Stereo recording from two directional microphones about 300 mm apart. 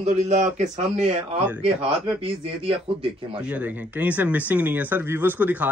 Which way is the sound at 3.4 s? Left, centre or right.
Centre.